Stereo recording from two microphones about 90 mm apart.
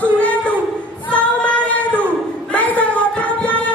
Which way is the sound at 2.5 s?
15° left (ahead or behind).